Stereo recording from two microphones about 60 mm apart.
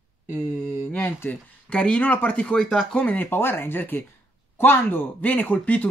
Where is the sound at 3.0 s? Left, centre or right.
Left.